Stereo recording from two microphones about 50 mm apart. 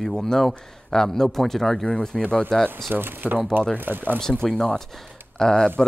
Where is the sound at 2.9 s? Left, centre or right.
Right.